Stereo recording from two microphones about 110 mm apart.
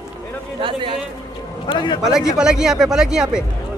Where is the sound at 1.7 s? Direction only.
40° left (ahead or behind).